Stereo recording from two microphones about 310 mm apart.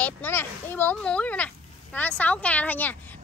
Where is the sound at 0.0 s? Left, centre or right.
Centre.